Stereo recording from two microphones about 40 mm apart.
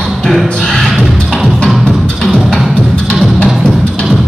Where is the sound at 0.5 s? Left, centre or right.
Centre.